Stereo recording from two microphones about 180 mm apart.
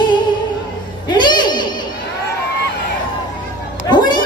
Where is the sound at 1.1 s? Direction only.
25° left (ahead or behind).